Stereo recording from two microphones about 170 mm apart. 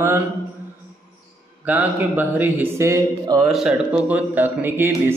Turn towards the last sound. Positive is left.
turn(degrees=-15)  # may be behind; listen again after turning